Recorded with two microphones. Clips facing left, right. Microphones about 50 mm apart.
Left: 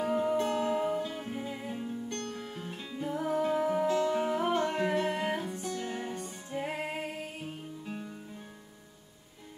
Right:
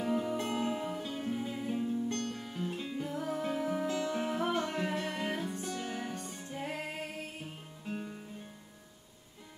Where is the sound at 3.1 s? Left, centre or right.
Centre.